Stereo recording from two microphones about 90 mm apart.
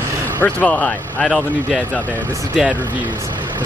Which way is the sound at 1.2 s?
Centre (ahead or behind).